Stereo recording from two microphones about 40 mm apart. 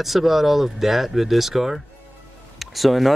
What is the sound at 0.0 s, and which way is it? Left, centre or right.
Speech, centre.